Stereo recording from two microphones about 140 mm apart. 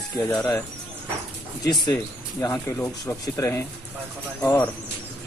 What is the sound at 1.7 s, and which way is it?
Speech, 30° left (ahead or behind).